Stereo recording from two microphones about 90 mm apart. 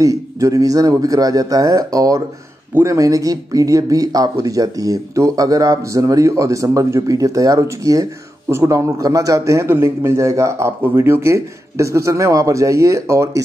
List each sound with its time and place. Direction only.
0.0 s speech: 40° right (ahead or behind)